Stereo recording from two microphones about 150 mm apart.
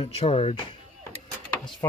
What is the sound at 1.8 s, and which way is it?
Speech, 20° left (ahead or behind).